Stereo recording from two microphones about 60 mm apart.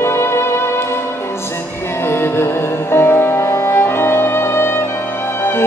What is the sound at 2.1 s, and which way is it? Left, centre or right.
Music, left.